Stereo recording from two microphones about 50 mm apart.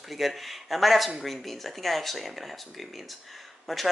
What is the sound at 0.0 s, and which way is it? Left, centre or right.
Speech, centre.